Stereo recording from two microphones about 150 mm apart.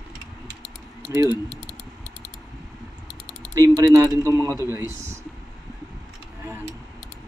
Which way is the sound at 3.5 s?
20° right (ahead or behind).